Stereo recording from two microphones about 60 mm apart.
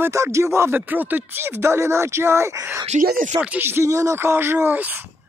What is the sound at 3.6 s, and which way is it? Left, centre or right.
Speech, right.